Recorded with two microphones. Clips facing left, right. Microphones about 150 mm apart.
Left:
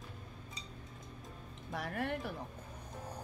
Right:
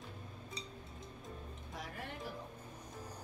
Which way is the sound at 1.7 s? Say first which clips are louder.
Left 10 dB; 65° left (ahead or behind).